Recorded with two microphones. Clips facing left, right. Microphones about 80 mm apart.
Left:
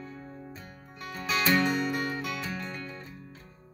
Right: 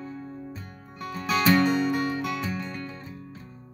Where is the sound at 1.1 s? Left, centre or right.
Centre.